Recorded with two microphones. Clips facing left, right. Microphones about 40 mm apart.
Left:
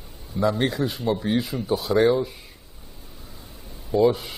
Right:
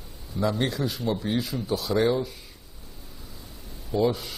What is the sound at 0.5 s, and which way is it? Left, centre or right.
A man's voice, centre.